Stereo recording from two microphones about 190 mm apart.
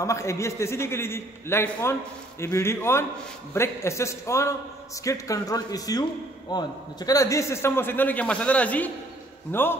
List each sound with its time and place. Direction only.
0.0 s a man's voice: 15° left (ahead or behind)